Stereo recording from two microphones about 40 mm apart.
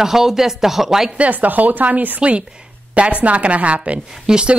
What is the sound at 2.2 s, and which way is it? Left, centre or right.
Speech, right.